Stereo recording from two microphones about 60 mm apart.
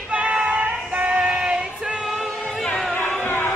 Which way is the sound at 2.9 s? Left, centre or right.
Left.